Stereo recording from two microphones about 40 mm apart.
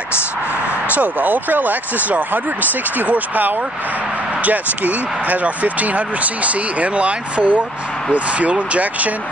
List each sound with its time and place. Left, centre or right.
0.8 s speech: right